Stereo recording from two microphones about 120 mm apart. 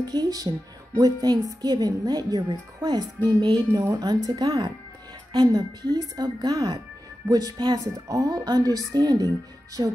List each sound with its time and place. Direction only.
0.0 s speech: 35° right (ahead or behind)